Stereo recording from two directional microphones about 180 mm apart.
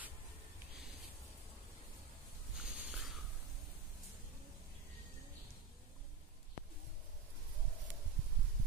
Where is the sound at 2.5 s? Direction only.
Centre (ahead or behind).